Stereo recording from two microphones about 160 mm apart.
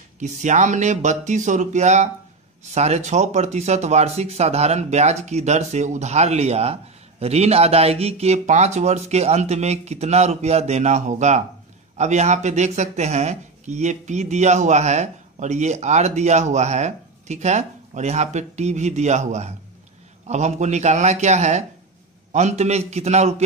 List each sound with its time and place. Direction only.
0.2 s speech: 50° right (ahead or behind)